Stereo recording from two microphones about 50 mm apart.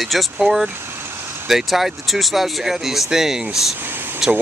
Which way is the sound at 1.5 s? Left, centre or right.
Centre.